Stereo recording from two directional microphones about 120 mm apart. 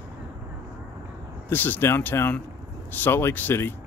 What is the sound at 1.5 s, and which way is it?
Speech, 15° left (ahead or behind).